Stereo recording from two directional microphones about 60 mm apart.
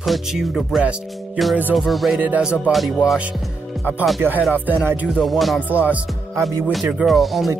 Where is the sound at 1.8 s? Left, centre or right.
Centre.